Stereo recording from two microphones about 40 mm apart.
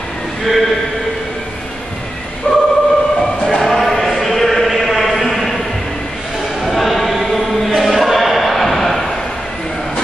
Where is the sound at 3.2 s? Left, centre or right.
Centre.